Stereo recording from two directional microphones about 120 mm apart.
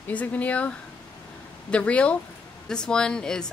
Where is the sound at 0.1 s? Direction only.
10° left (ahead or behind).